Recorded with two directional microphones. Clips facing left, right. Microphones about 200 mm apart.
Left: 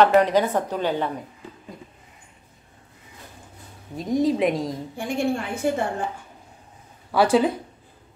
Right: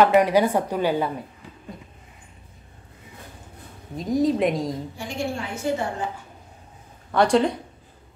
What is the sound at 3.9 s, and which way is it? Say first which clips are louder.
Speech: even; centre (ahead or behind).